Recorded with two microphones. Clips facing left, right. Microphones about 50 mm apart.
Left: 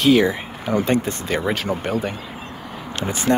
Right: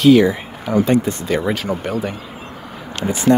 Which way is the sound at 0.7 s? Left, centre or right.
Left.